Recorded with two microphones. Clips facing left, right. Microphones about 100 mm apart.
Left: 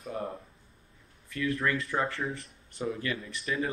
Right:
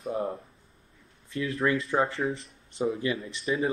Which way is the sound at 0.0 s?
30° right (ahead or behind).